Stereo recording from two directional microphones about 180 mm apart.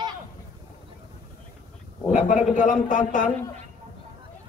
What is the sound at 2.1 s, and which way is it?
Speech, 45° left (ahead or behind).